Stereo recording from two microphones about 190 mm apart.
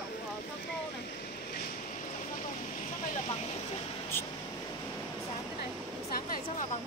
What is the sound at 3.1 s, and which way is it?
Speech, 30° left (ahead or behind).